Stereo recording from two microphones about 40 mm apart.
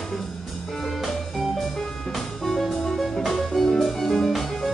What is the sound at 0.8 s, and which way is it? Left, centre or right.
Music, centre.